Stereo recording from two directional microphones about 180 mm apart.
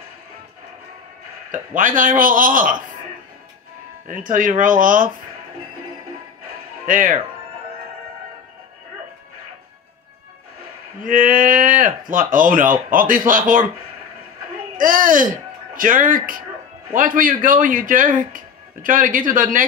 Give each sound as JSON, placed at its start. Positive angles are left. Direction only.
{"t": 1.5, "sound": "speech", "side_deg": -50}
{"t": 4.1, "sound": "speech", "side_deg": -50}
{"t": 6.9, "sound": "speech", "side_deg": -50}
{"t": 11.0, "sound": "speech", "side_deg": -50}
{"t": 14.8, "sound": "speech", "side_deg": -50}